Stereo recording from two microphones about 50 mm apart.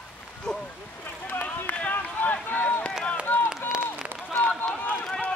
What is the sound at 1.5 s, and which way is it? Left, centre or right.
Run, left.